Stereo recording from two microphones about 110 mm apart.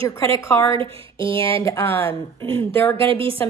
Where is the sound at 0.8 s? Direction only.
55° right (ahead or behind).